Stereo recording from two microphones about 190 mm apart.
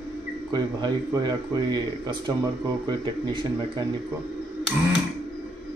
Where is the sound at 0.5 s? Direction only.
20° right (ahead or behind).